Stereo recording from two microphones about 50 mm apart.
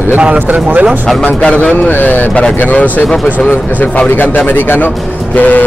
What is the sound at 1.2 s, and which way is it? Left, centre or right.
Speech, left.